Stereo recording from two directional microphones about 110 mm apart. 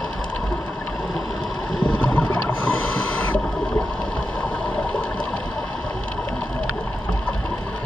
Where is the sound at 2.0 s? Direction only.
15° left (ahead or behind).